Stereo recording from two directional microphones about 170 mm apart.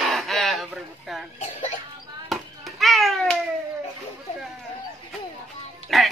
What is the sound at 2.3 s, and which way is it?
Children playing, centre (ahead or behind).